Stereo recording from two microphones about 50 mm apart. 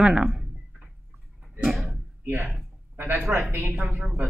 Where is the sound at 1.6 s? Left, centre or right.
Centre.